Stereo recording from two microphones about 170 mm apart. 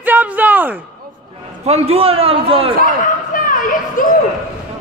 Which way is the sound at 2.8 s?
50° left (ahead or behind).